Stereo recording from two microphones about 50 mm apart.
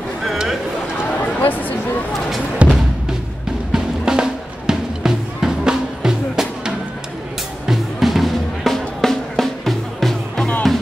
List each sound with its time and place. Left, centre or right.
1.4 s a sound: left
2.6 s music: right
3.7 s drum: centre
7.6 s music: centre